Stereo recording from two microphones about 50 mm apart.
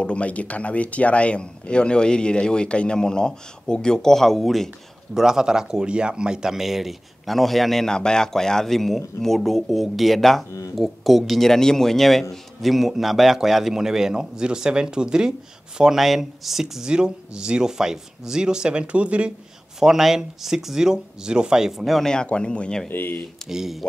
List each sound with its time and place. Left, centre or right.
0.0 s speech: left; by 4.6 s centre
5.1 s speech: centre
7.9 s a man's voice: centre
15.8 s speech: centre
16.9 s speech: centre
19.8 s speech: centre
22.0 s speech: centre
22.8 s speech: left
23.5 s speech: centre